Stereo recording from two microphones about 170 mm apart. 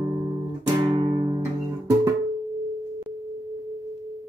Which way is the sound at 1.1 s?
20° right (ahead or behind).